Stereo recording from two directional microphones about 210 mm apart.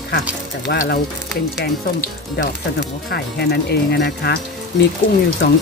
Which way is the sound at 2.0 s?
45° left (ahead or behind).